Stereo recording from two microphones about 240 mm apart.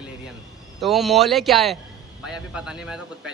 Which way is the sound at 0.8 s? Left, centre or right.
Centre.